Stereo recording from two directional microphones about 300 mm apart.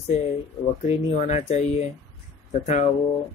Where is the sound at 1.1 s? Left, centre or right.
Left.